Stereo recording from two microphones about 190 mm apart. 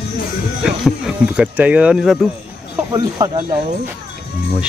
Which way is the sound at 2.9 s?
20° right (ahead or behind).